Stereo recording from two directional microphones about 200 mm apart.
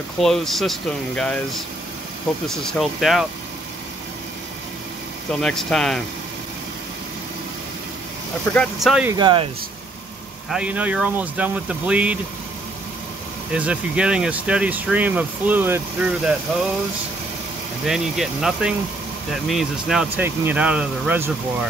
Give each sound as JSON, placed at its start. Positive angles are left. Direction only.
{"t": 0.2, "sound": "speech", "side_deg": 0}
{"t": 2.4, "sound": "speech", "side_deg": 0}
{"t": 5.4, "sound": "speech", "side_deg": 5}
{"t": 8.5, "sound": "speech", "side_deg": 0}
{"t": 9.1, "sound": "speech", "side_deg": -25}
{"t": 10.5, "sound": "speech", "side_deg": -5}
{"t": 13.5, "sound": "speech", "side_deg": -5}
{"t": 17.8, "sound": "speech", "side_deg": 0}